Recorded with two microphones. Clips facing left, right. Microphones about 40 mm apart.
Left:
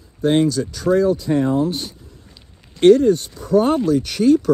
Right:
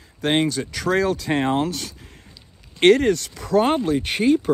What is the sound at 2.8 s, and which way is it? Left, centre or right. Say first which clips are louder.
Speech: left 4 dB; right.